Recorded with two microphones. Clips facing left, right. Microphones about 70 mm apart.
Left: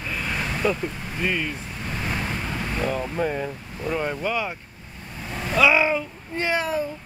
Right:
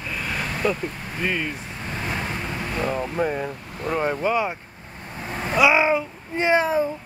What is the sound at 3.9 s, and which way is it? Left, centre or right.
Speech, right.